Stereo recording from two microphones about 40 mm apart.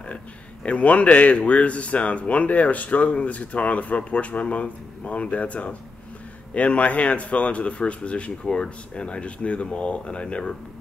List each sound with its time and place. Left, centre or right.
0.7 s speech: left